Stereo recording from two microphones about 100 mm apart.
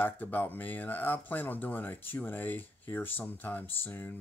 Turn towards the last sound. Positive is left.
turn(degrees=20)  # may be behind; listen again after turning